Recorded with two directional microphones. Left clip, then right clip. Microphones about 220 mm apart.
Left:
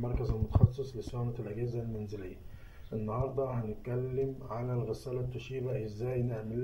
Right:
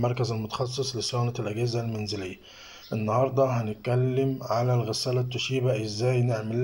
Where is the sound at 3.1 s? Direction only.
60° right (ahead or behind).